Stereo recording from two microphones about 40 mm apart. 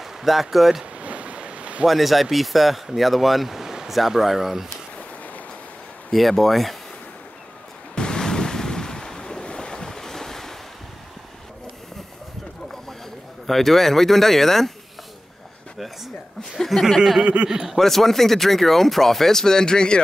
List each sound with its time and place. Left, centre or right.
0.0 s speech: centre
0.9 s ocean: right
1.9 s speech: centre
6.1 s speech: centre
7.9 s waves: centre
13.5 s speech: centre
16.5 s speech: centre
17.2 s a man's voice: right
17.5 s a man's voice: centre
17.7 s speech: centre